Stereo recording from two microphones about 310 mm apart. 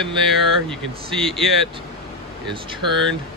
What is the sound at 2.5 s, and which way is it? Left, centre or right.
Speech, centre.